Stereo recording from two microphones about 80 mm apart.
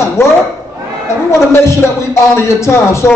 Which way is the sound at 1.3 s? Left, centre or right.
Left.